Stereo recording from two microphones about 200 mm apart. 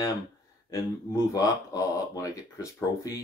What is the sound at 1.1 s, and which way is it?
Speech, 15° left (ahead or behind).